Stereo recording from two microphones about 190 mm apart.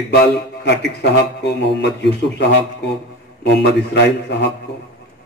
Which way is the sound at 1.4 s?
65° left (ahead or behind).